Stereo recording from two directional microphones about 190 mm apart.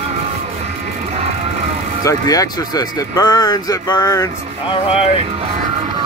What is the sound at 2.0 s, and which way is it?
Speech, 20° left (ahead or behind).